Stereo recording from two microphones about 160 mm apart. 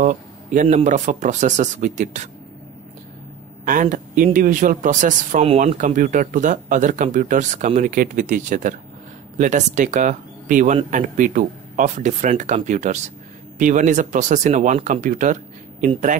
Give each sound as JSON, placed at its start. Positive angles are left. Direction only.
{"t": 0.0, "sound": "speech", "side_deg": -55}
{"t": 3.6, "sound": "speech", "side_deg": -55}
{"t": 5.4, "sound": "speech", "side_deg": -40}
{"t": 5.8, "sound": "speech", "side_deg": -55}